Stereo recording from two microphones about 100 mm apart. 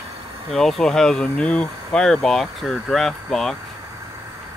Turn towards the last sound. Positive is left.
turn(degrees=5)  # may be behind; listen again after turning